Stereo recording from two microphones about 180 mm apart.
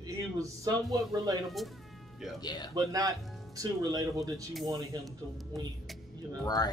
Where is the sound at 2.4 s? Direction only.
20° left (ahead or behind).